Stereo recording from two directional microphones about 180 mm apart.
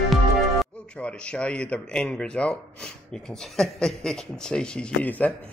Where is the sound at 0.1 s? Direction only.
5° left (ahead or behind).